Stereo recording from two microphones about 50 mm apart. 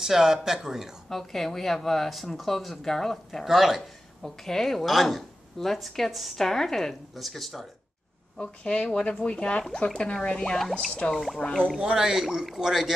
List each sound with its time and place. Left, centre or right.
0.0 s speech: centre
1.0 s a woman's voice: centre
4.2 s a woman's voice: centre
8.4 s speech: left
11.1 s a woman's voice: centre
11.4 s speech: centre
11.8 s speech: centre